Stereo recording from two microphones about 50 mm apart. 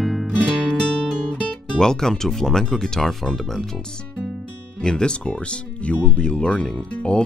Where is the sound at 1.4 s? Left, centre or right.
Centre.